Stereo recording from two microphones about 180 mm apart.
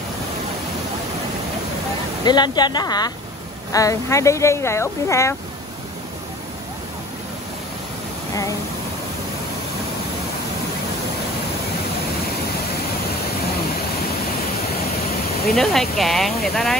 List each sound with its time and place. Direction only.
2.2 s speech: 25° left (ahead or behind)
8.3 s speech: 20° left (ahead or behind)
15.4 s speech: centre (ahead or behind)